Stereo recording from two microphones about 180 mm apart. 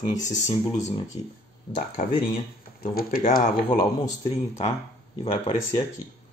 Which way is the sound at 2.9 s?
50° left (ahead or behind).